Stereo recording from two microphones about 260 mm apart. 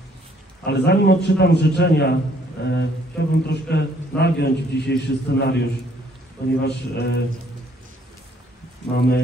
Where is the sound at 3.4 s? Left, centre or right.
Left.